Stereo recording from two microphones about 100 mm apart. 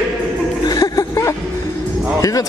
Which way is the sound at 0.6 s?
40° left (ahead or behind).